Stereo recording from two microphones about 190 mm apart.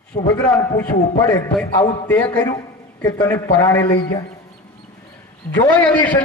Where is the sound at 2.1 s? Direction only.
10° left (ahead or behind).